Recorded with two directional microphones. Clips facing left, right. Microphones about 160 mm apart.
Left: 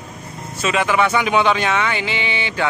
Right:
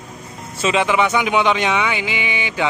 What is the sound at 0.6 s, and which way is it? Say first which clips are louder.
Speech: right 1 dB; 20° right (ahead or behind).